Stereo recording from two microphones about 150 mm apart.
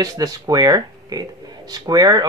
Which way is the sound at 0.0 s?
25° right (ahead or behind).